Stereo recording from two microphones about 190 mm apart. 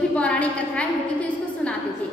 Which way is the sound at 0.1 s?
5° left (ahead or behind).